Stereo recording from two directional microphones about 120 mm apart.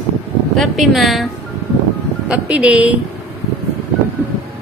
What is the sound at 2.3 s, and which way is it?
Speech, 10° right (ahead or behind).